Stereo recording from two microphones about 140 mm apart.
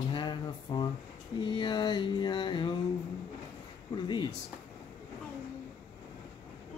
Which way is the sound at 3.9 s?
35° left (ahead or behind).